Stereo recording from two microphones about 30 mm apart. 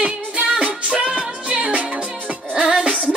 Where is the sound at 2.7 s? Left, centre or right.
Centre.